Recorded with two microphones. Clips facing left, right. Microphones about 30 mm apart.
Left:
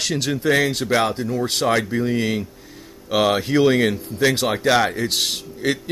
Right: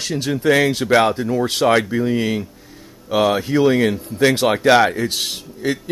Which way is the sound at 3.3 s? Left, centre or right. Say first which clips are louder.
Even; left.